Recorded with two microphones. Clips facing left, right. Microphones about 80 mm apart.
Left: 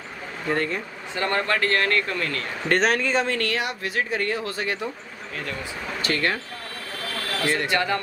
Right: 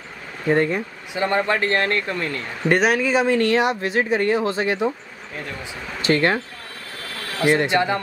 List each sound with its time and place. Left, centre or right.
0.5 s speech: centre
2.7 s speech: centre
3.3 s speech: right
6.0 s speech: right
7.4 s speech: right